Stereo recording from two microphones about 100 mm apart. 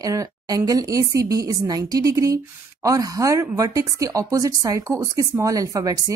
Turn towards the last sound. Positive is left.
turn(degrees=-35)  # may be behind; listen again after turning